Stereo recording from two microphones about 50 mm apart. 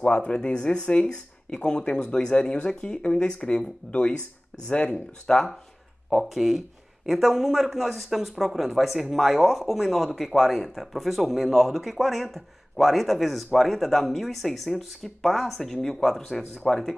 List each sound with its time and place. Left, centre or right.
0.0 s speech: left
5.2 s speech: centre
6.0 s speech: centre